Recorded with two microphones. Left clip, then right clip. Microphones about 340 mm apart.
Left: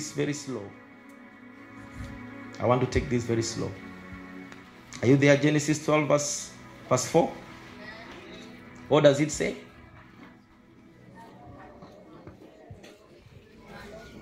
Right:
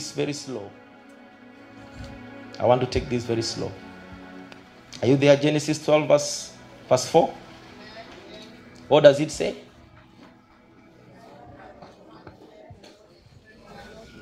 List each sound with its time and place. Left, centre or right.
0.0 s speech: right
1.6 s music: right
8.3 s music: right